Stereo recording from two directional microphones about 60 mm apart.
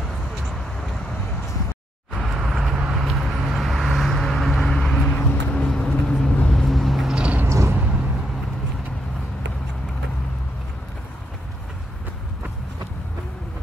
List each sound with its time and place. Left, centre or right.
2.1 s vehicle: centre
7.2 s a sound: right
7.4 s vehicle: right